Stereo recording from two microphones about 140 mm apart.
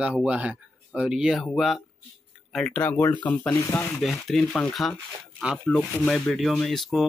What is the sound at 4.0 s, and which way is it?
Speech, centre (ahead or behind).